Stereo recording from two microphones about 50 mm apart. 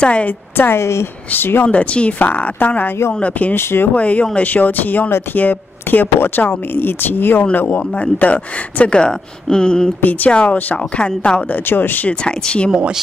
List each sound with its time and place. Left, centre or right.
0.0 s speech: left
0.6 s a woman's voice: left
1.3 s speech: left
1.7 s speech: left
3.5 s speech: left
3.9 s speech: left
7.9 s speech: left
10.3 s speech: left
11.5 s speech: left
12.1 s speech: centre